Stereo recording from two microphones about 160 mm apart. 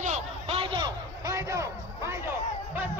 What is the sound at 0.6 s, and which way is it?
Speech, 30° right (ahead or behind).